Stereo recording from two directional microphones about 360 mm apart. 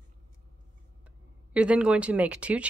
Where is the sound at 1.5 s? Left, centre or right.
Centre.